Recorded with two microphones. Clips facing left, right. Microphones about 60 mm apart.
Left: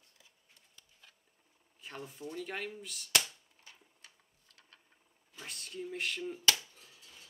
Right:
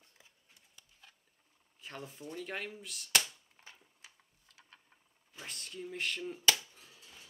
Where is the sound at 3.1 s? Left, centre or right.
Right.